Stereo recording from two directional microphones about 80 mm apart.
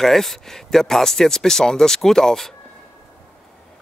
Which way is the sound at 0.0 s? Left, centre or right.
Centre.